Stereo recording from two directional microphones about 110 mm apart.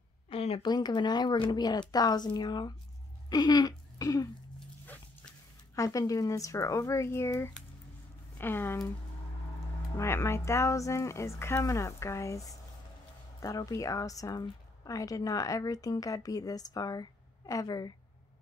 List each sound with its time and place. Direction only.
0.3 s a sound: 60° left (ahead or behind)
0.7 s speech: 40° left (ahead or behind)
5.8 s speech: 30° left (ahead or behind)
9.9 s speech: 25° left (ahead or behind)